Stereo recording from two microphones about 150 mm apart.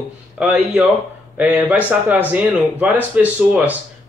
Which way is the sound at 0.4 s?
10° right (ahead or behind).